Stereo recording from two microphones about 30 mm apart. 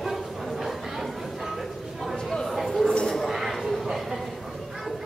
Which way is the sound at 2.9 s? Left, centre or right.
Left.